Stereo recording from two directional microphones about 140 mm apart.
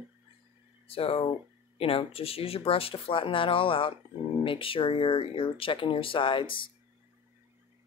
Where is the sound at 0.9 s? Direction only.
45° left (ahead or behind).